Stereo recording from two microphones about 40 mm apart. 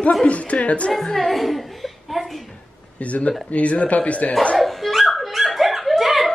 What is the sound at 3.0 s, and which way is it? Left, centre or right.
Speech, left.